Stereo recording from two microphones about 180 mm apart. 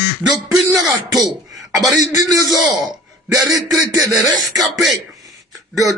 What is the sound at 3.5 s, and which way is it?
Speech, 20° right (ahead or behind).